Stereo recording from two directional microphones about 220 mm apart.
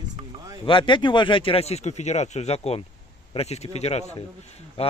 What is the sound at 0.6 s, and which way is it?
A man's voice, 20° left (ahead or behind).